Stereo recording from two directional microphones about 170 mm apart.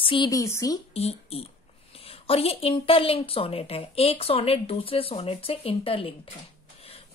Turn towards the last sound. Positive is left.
turn(degrees=35)  # may be behind; listen again after turning